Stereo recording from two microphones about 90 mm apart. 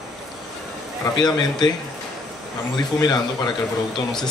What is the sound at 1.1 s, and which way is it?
Speech, 50° left (ahead or behind).